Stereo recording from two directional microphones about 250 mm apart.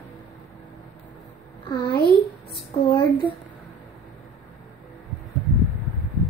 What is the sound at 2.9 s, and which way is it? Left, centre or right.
Speech, centre.